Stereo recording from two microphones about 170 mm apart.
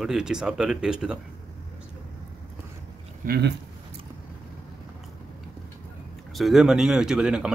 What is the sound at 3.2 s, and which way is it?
Speech, 65° right (ahead or behind).